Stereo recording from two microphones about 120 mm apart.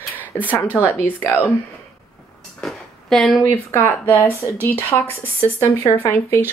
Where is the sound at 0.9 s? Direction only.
15° left (ahead or behind).